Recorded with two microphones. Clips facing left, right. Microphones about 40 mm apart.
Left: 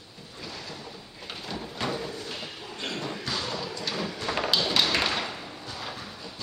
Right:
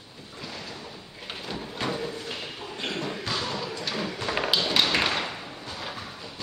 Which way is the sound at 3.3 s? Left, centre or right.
Centre.